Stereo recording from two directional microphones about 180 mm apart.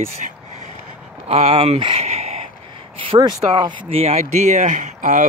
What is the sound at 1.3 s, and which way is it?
Speech, 30° right (ahead or behind).